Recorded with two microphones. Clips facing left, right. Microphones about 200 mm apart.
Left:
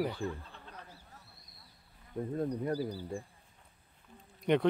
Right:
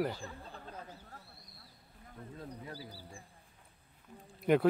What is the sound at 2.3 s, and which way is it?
Speech, 50° left (ahead or behind).